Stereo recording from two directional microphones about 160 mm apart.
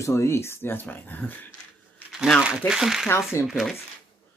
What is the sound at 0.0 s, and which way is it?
Speech, 15° left (ahead or behind).